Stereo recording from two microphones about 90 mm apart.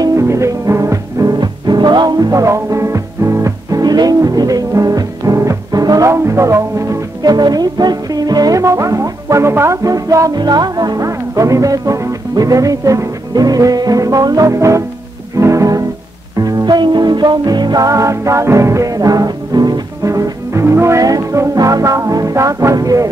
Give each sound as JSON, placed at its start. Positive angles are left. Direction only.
{"t": 0.0, "sound": "music", "side_deg": -35}
{"t": 1.4, "sound": "music", "side_deg": -55}
{"t": 9.8, "sound": "music", "side_deg": -40}
{"t": 16.3, "sound": "music", "side_deg": -50}
{"t": 17.8, "sound": "music", "side_deg": -35}